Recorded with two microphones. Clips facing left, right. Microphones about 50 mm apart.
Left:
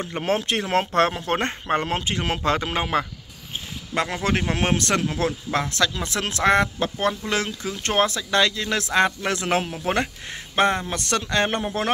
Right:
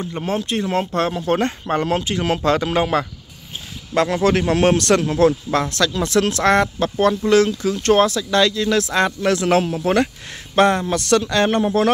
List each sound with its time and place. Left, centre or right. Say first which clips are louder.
0.0 s speech: right 1 dB; left
1.2 s a man's voice: right 5 dB; left; by 11.0 s centre
11.0 s a man's voice: right 6 dB; left